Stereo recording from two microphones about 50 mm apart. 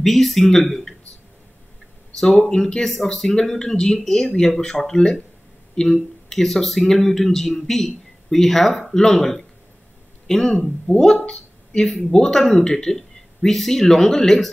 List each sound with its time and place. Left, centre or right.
0.0 s speech: centre
2.3 s speech: centre